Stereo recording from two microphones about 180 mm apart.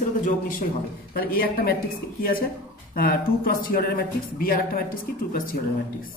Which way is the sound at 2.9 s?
55° left (ahead or behind).